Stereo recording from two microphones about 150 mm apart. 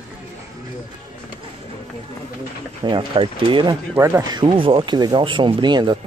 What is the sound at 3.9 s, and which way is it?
Speech, 20° right (ahead or behind).